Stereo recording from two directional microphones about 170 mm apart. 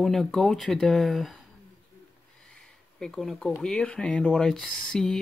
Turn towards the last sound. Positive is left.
turn(degrees=0)  # may be behind; listen again after turning